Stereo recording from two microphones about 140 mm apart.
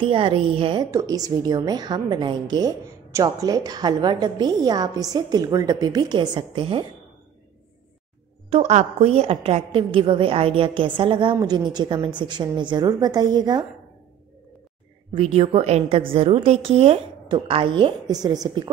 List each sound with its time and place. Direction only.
0.0 s a woman's voice: 40° right (ahead or behind)
0.9 s a woman's voice: 25° right (ahead or behind)
8.5 s a woman's voice: 50° right (ahead or behind); by 13.7 s 30° right (ahead or behind)
15.1 s a woman's voice: 45° right (ahead or behind)